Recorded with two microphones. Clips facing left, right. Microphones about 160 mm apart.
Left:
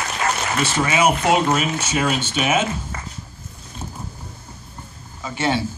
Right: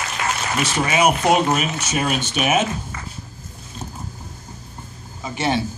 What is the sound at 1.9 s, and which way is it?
Speech, 15° right (ahead or behind).